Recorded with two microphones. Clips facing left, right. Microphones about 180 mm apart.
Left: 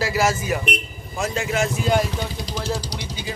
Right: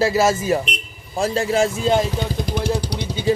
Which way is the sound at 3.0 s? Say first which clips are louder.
Right 11 dB; 30° right (ahead or behind).